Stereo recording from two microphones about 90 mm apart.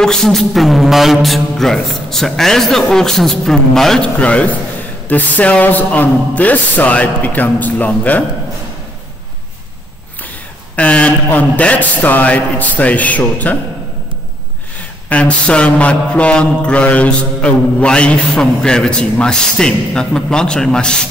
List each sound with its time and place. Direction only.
0.0 s a man's voice: 5° left (ahead or behind)
4.2 s mantra: 15° left (ahead or behind)
10.8 s mantra: 15° left (ahead or behind)
15.0 s mantra: 15° left (ahead or behind)